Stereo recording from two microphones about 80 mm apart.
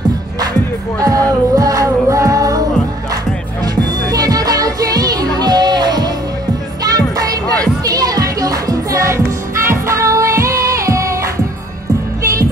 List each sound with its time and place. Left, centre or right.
0.9 s music: right
3.6 s music: right